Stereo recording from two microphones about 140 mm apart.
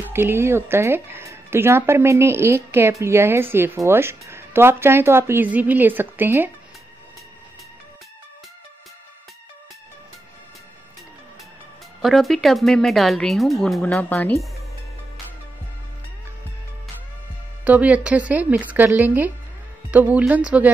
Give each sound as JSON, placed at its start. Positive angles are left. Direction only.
{"t": 0.0, "sound": "speech", "side_deg": -15}
{"t": 12.0, "sound": "speech", "side_deg": 0}
{"t": 14.0, "sound": "speech", "side_deg": 10}
{"t": 17.6, "sound": "speech", "side_deg": -10}